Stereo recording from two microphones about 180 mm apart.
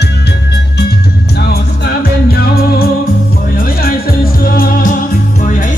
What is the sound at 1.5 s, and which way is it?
Music, 60° left (ahead or behind).